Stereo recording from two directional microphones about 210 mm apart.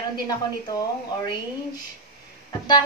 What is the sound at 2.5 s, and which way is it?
Speech, 20° left (ahead or behind).